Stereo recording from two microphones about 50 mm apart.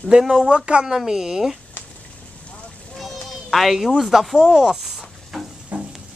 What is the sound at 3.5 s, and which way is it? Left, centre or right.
Speech, centre.